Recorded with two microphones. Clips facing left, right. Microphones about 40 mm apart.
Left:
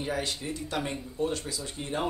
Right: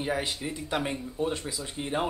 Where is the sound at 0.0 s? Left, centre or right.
Centre.